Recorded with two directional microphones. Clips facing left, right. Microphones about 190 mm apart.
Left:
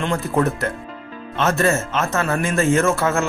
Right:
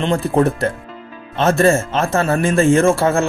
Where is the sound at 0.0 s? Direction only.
30° right (ahead or behind).